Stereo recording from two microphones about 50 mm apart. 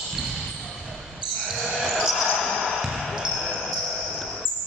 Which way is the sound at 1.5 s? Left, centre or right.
Centre.